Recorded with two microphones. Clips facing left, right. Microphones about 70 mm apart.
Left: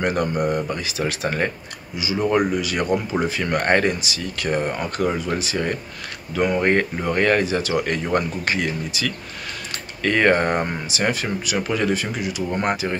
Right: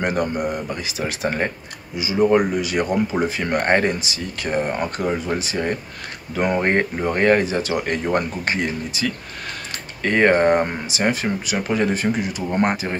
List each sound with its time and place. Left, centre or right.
0.0 s speech: centre